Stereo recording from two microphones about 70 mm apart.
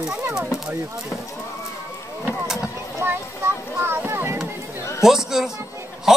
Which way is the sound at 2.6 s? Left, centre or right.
Right.